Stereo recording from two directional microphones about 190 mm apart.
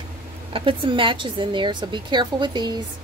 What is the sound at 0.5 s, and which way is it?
A woman's voice, 25° right (ahead or behind).